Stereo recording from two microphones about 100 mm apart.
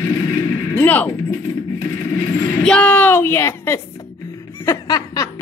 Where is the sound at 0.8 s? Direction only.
20° left (ahead or behind).